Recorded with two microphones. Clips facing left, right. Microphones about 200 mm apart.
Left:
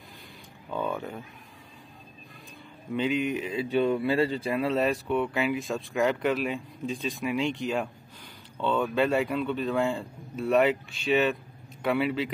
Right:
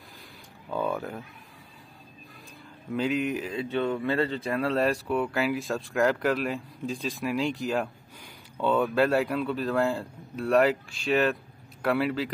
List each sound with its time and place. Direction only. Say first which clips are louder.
0.7 s a sound: right 2 dB; 5° right (ahead or behind)
2.9 s speech: even; centre (ahead or behind)
3.7 s speech: left 3 dB; 15° left (ahead or behind); by 12.3 s centre (ahead or behind)